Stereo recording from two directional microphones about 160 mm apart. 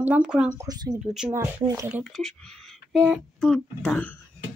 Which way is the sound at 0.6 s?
20° right (ahead or behind).